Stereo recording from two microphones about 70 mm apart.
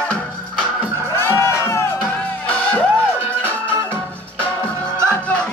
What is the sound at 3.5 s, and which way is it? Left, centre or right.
Organ, left.